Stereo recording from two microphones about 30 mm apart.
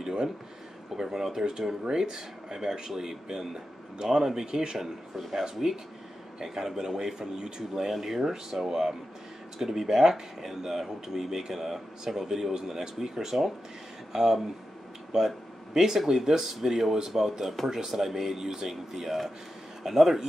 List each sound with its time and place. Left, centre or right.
0.9 s speech: centre
7.9 s speech: centre